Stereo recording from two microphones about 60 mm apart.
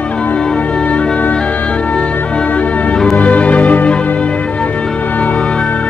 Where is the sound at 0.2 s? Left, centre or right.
Centre.